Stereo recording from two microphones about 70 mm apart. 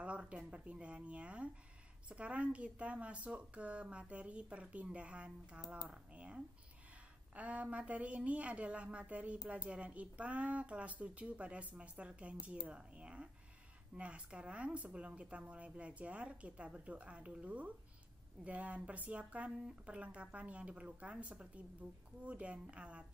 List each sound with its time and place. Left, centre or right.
0.0 s a woman's voice: centre